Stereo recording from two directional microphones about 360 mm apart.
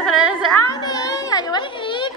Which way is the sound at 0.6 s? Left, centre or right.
Centre.